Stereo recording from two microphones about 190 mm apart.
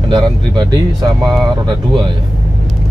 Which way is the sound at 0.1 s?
20° right (ahead or behind).